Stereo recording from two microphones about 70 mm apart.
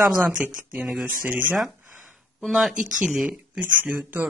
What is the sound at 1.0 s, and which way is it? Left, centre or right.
Speech, right.